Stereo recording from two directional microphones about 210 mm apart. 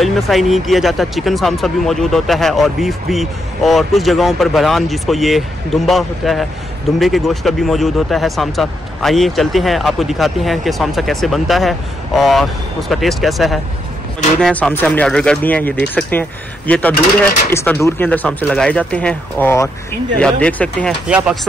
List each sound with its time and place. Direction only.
0.0 s speech: centre (ahead or behind)
21.1 s speech: 5° right (ahead or behind)